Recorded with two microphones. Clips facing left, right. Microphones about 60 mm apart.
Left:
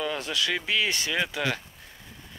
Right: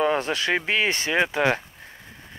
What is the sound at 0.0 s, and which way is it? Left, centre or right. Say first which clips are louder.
Speech: right 6 dB; right.